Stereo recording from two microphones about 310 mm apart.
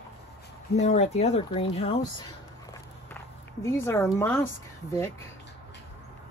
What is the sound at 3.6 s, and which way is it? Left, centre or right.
Speech, centre.